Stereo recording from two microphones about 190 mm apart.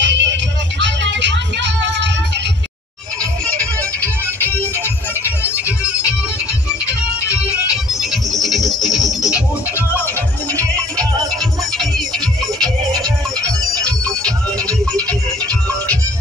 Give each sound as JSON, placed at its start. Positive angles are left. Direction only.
{"t": 0.0, "sound": "music", "side_deg": -70}
{"t": 4.0, "sound": "music", "side_deg": 10}
{"t": 7.9, "sound": "music", "side_deg": 0}
{"t": 9.8, "sound": "music", "side_deg": 10}
{"t": 14.2, "sound": "music", "side_deg": 5}